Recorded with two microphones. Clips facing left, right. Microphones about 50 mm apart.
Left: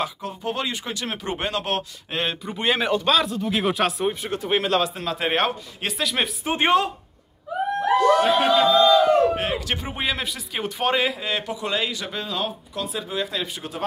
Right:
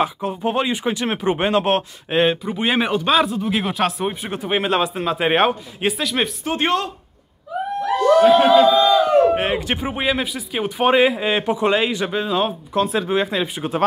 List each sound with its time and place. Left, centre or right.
0.0 s a man's voice: right
2.4 s speech: centre
3.5 s speech: centre
4.1 s a man's voice: centre
5.9 s speech: centre
6.4 s speech: centre
8.2 s speech: centre
9.3 s speech: right
9.8 s a man's voice: centre
12.7 s speech: right
13.1 s speech: right